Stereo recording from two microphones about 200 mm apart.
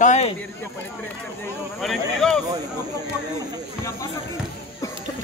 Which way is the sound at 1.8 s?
Centre (ahead or behind).